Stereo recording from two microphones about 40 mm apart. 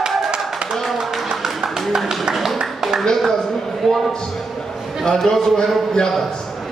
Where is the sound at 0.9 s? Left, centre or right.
Centre.